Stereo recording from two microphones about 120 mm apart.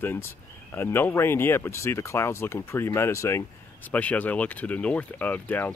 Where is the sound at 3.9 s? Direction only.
10° left (ahead or behind).